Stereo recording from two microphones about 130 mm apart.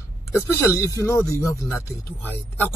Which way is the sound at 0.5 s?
20° left (ahead or behind).